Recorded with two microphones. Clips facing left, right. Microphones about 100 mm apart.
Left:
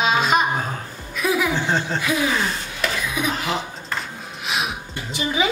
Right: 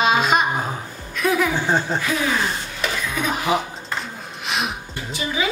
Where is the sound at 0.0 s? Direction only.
Centre (ahead or behind).